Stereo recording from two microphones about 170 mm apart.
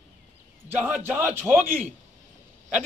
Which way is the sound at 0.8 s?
10° right (ahead or behind).